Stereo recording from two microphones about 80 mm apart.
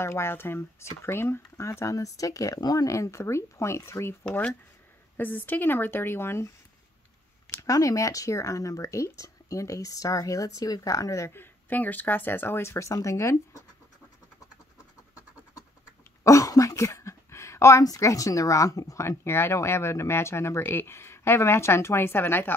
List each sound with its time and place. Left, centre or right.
0.0 s speech: left
4.2 s speech: centre; by 6.5 s left
7.6 s speech: left
11.3 s speech: left
16.3 s speech: left